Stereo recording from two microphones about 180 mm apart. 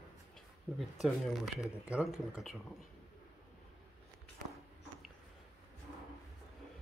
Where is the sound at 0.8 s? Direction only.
Centre (ahead or behind).